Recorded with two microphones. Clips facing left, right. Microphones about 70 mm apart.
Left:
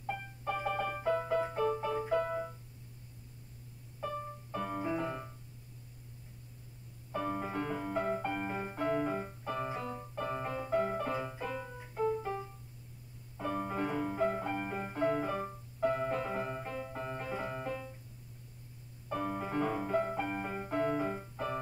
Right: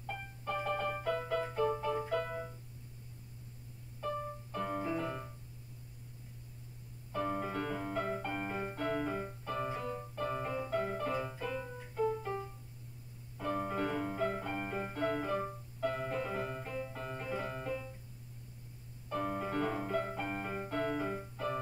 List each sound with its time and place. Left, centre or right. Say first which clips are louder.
0.1 s music: left 2 dB; centre
4.0 s music: right 1 dB; centre
4.8 s piano: left 1 dB; centre
7.2 s music: even; centre
8.3 s music: left 1 dB; centre
8.7 s piano: left 4 dB; centre
9.9 s music: even; centre
14.5 s music: left 1 dB; centre
15.8 s piano: left 4 dB; centre
19.2 s music: left 1 dB; centre
20.2 s music: left 1 dB; centre